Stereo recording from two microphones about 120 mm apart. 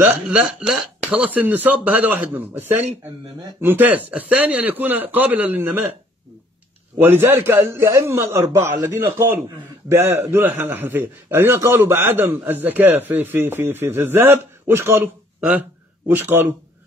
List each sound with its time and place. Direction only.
0.0 s speech: 10° right (ahead or behind)
7.0 s a man's voice: 20° right (ahead or behind)